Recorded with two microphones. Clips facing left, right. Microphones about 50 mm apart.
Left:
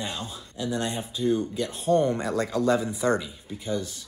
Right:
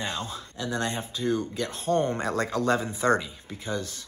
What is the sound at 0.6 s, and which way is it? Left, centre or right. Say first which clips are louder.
Speech: left 1 dB; right.